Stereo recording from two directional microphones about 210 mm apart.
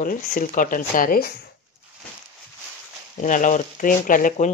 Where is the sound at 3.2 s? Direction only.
35° left (ahead or behind).